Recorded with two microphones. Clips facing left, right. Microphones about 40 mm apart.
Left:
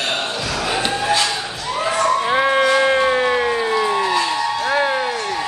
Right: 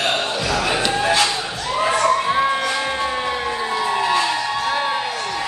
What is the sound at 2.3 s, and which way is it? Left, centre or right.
Music, left.